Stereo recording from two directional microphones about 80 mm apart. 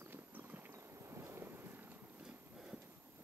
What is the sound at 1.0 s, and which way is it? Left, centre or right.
Vehicle, right.